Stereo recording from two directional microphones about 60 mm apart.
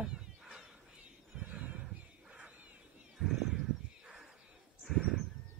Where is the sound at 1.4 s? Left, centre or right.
Right.